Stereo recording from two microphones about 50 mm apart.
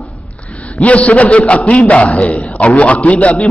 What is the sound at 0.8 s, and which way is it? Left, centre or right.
A man's voice, left.